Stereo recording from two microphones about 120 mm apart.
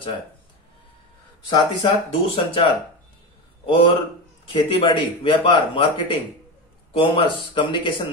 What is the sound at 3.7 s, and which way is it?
Speech, 50° left (ahead or behind).